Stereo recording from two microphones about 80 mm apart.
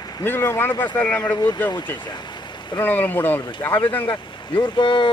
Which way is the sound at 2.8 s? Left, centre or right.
Left.